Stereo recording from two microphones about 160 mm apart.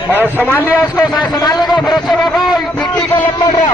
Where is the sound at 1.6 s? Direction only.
Centre (ahead or behind).